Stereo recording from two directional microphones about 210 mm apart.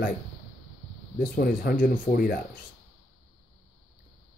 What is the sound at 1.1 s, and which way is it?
Speech, 45° left (ahead or behind).